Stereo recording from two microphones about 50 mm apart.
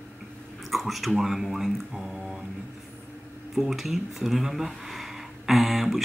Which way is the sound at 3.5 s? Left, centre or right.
Centre.